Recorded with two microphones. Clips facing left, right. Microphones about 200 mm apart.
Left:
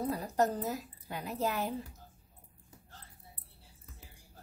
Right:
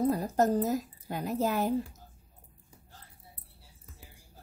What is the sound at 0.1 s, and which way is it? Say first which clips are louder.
A woman's voice: right 5 dB; 45° right (ahead or behind).